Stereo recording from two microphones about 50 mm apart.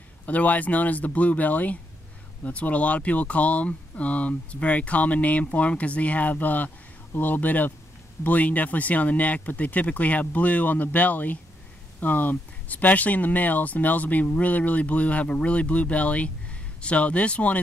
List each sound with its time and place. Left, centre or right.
0.3 s speech: left